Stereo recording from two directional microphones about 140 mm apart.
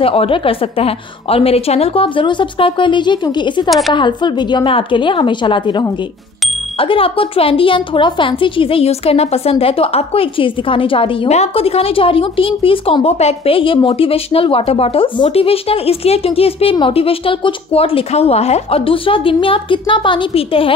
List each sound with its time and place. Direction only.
0.0 s a woman's voice: 40° left (ahead or behind)